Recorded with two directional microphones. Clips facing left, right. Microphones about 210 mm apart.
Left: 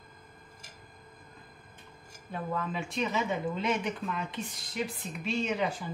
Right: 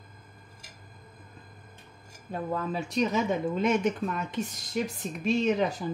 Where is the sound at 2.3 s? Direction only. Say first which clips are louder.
Right 3 dB; 40° right (ahead or behind).